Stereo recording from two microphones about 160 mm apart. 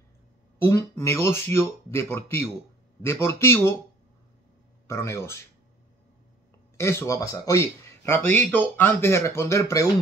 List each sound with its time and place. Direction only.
0.7 s speech: 15° left (ahead or behind)
4.8 s speech: 15° left (ahead or behind)
6.8 s speech: 15° left (ahead or behind)